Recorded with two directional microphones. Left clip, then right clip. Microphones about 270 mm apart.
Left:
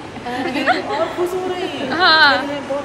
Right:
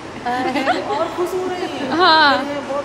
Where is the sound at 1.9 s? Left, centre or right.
Centre.